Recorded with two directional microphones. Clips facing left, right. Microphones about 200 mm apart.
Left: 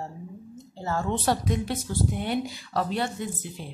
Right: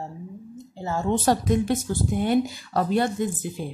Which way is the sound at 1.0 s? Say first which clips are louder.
Right 6 dB; 45° right (ahead or behind).